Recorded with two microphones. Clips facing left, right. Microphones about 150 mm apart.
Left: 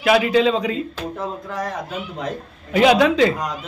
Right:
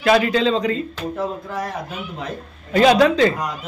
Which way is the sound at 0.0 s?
5° left (ahead or behind).